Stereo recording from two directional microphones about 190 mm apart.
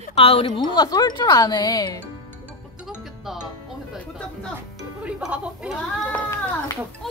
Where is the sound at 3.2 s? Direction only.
Centre (ahead or behind).